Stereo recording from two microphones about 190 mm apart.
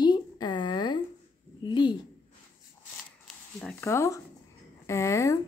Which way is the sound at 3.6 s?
10° left (ahead or behind).